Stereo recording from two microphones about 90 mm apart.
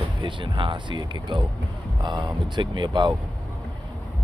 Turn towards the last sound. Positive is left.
turn(degrees=-60)  # may be behind; listen again after turning